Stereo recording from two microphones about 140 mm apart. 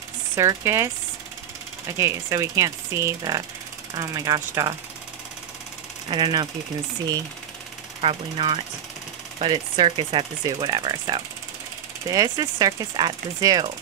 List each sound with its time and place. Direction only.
0.4 s speech: 20° right (ahead or behind)
2.0 s speech: 20° right (ahead or behind)
6.0 s speech: 30° right (ahead or behind)
8.0 s speech: 40° right (ahead or behind)